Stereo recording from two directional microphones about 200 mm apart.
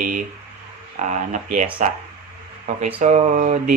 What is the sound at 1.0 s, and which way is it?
Speech, 40° right (ahead or behind).